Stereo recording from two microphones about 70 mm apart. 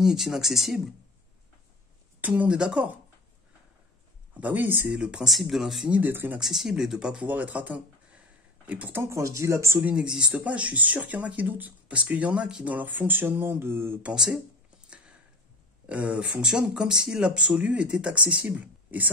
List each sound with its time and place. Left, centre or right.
0.0 s speech: centre
2.2 s speech: right
4.3 s speech: right
4.9 s speech: centre
5.2 s speech: centre
5.9 s speech: right
6.4 s speech: centre
7.2 s speech: right
8.9 s speech: right
9.9 s speech: centre
12.7 s speech: right
15.9 s speech: centre